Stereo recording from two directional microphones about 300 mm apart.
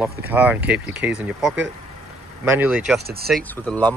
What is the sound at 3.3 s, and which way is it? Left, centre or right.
Speech, centre.